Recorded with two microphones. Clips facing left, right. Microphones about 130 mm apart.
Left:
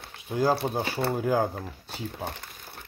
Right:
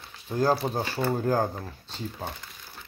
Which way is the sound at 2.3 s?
65° left (ahead or behind).